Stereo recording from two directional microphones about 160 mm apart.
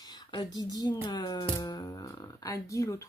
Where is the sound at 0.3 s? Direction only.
25° left (ahead or behind).